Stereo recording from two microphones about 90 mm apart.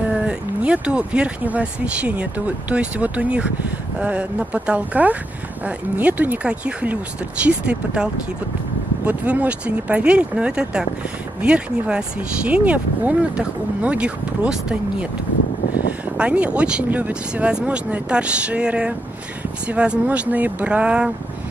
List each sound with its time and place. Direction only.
0.2 s speech: 10° right (ahead or behind)
16.2 s speech: 15° right (ahead or behind)